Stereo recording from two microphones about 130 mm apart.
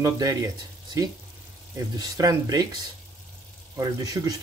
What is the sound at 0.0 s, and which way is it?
Speech, 30° right (ahead or behind).